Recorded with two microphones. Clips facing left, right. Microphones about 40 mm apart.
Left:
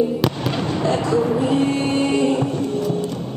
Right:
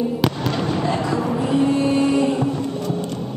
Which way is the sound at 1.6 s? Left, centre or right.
Left.